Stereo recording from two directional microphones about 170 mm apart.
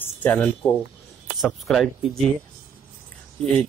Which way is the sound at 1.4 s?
Centre (ahead or behind).